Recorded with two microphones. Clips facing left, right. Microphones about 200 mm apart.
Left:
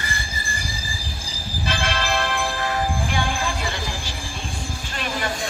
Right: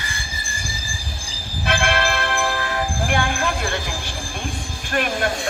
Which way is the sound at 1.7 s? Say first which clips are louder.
Right 5 dB; 60° right (ahead or behind).